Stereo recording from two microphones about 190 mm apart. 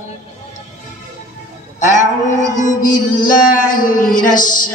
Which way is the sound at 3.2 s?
45° left (ahead or behind).